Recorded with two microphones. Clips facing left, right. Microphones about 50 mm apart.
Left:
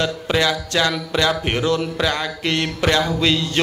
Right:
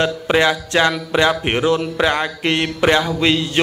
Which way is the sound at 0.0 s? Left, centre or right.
Right.